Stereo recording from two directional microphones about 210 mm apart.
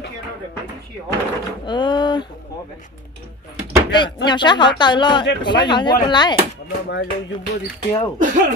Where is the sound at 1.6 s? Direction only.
20° left (ahead or behind).